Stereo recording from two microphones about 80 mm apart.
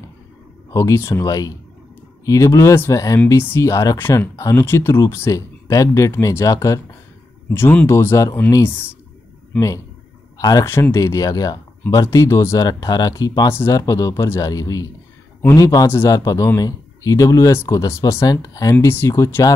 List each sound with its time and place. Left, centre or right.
0.7 s speech: left
1.2 s speech: left
2.2 s speech: left
7.4 s speech: left
10.3 s a sound: left
10.6 s speech: left
11.0 s speech: left
12.5 s speech: left
13.5 s speech: left